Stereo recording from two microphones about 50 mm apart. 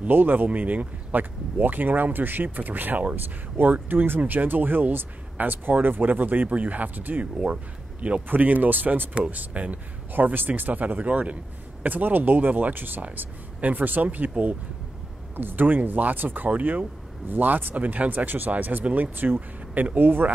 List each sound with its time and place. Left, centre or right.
0.1 s speech: right
0.5 s speech: right
8.3 s speech: right
9.1 s speech: right
11.8 s speech: right
15.3 s speech: right